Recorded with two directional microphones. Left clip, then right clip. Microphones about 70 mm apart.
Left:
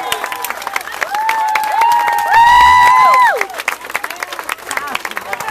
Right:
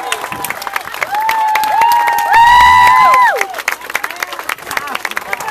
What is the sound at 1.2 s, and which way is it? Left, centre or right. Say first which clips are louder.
Applause: right 2 dB; right.